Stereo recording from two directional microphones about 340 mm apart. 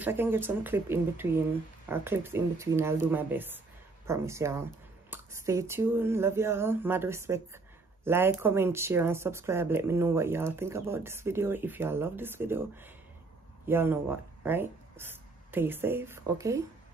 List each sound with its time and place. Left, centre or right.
0.0 s speech: centre